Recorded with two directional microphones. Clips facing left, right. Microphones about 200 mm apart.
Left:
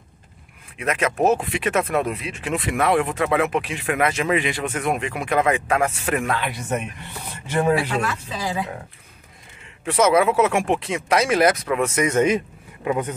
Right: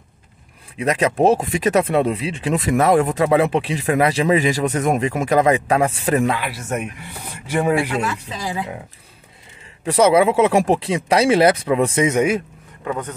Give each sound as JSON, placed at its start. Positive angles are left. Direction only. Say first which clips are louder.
{"t": 0.7, "sound": "speech", "louder": "right 4 dB", "side_deg": -35}
{"t": 6.3, "sound": "speech", "louder": "right 1 dB", "side_deg": -5}
{"t": 9.8, "sound": "speech", "louder": "right 3 dB", "side_deg": -30}
{"t": 12.1, "sound": "speech", "louder": "right 1 dB", "side_deg": -10}
{"t": 12.8, "sound": "speech", "louder": "left 2 dB", "side_deg": 15}